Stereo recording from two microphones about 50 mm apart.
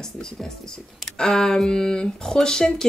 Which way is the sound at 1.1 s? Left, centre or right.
Centre.